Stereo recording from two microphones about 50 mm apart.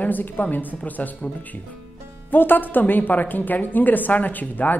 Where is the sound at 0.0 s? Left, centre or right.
Left.